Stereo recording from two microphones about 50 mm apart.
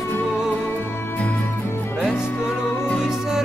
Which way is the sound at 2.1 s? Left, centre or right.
Centre.